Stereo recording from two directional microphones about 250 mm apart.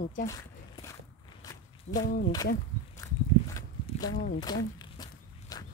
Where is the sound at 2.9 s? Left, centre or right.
Centre.